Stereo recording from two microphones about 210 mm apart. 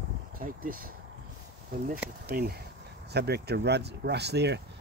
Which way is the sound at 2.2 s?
50° right (ahead or behind).